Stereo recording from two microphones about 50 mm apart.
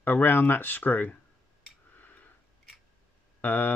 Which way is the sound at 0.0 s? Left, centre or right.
Left.